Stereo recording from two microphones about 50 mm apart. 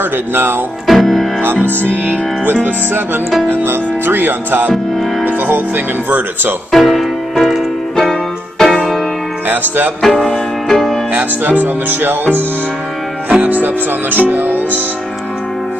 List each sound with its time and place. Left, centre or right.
0.3 s music: right
0.8 s music: centre
1.4 s music: right
3.4 s speech: right
6.0 s speech: right
6.7 s music: centre
9.5 s music: right
10.0 s music: centre
11.4 s speech: right
13.4 s speech: right